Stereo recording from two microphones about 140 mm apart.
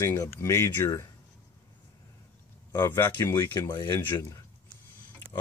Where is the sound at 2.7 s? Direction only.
15° left (ahead or behind).